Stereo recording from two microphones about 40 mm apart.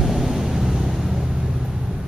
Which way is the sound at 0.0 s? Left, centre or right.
Centre.